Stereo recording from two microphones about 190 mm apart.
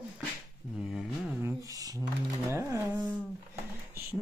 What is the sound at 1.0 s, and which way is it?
Mantra, 5° right (ahead or behind).